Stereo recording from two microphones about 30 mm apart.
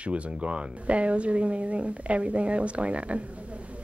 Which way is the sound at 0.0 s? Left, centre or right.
Right.